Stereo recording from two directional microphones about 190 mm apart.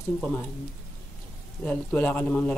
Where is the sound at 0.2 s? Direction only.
5° left (ahead or behind).